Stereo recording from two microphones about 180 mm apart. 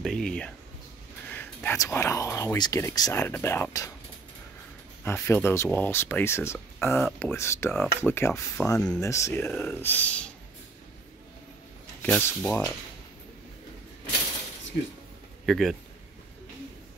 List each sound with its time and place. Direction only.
0.0 s speech: 5° left (ahead or behind)
5.0 s speech: 15° left (ahead or behind)
12.0 s speech: 10° left (ahead or behind)
15.4 s a man's voice: centre (ahead or behind)